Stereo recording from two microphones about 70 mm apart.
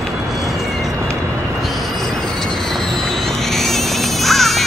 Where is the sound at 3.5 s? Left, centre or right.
Centre.